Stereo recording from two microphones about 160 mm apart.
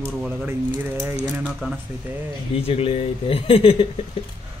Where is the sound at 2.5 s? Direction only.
35° left (ahead or behind).